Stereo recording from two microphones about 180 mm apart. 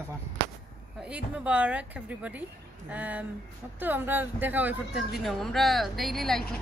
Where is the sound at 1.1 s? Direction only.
5° right (ahead or behind).